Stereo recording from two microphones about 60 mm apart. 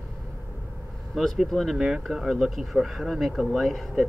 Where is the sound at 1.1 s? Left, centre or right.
Centre.